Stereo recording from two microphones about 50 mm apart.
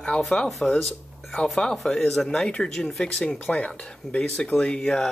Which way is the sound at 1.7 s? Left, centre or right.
Centre.